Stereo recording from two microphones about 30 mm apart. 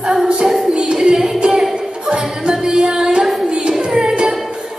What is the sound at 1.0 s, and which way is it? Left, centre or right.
Music, right.